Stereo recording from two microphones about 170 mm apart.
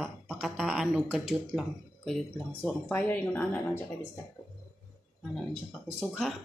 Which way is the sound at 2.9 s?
10° left (ahead or behind).